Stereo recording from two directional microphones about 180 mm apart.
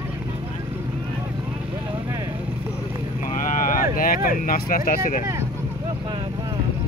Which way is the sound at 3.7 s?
50° left (ahead or behind).